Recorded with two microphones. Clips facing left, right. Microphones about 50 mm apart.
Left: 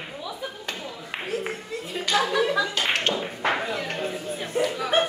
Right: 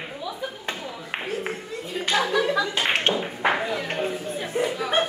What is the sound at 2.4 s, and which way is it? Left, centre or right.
Clapping, centre.